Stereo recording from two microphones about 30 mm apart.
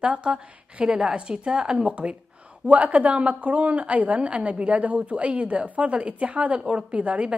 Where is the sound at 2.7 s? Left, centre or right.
Right.